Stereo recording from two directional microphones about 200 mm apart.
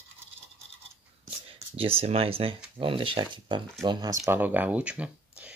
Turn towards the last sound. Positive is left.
turn(degrees=-5)  # may be behind; listen again after turning